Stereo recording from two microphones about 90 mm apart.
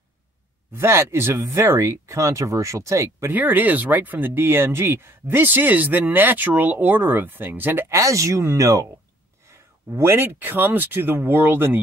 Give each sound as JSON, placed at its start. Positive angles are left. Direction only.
{"t": 0.7, "sound": "speech", "side_deg": -30}